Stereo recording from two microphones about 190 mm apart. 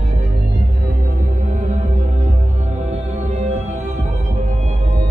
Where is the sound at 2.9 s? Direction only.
35° right (ahead or behind).